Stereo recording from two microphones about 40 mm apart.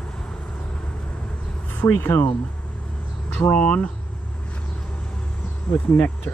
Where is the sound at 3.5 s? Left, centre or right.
Left.